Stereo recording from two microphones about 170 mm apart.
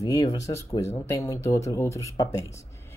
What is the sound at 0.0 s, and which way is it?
Speech, 20° left (ahead or behind).